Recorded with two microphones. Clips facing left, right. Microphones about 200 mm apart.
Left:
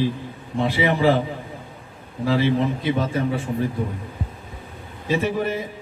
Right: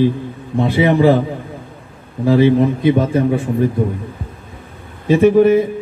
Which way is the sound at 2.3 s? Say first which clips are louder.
Right 8 dB; 55° right (ahead or behind).